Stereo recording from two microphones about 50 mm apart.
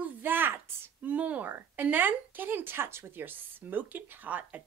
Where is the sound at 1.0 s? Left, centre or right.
Right.